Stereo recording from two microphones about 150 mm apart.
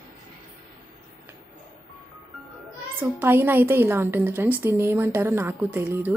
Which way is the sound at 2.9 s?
15° right (ahead or behind).